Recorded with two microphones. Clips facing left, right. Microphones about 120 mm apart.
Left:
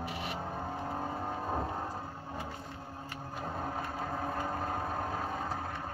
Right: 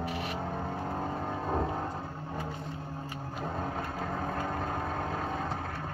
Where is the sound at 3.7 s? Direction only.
10° left (ahead or behind).